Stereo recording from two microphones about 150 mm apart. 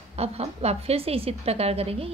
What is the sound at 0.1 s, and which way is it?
A woman's voice, 45° right (ahead or behind).